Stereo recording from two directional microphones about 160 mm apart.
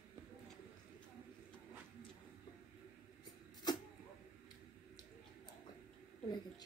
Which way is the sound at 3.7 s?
25° left (ahead or behind).